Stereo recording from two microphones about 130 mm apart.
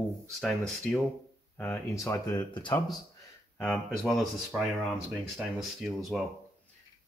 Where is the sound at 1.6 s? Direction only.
20° left (ahead or behind).